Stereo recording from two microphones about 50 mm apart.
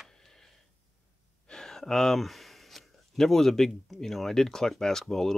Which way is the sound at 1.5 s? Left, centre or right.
Centre.